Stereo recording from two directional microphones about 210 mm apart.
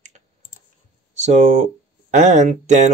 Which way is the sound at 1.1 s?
35° right (ahead or behind).